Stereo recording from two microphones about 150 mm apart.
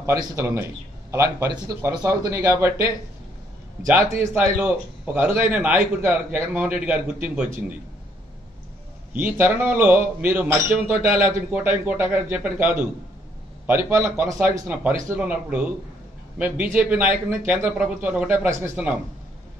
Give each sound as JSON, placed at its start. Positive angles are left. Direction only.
{"t": 0.0, "sound": "a man's voice", "side_deg": -20}
{"t": 3.8, "sound": "a man's voice", "side_deg": -15}
{"t": 9.1, "sound": "a man's voice", "side_deg": -15}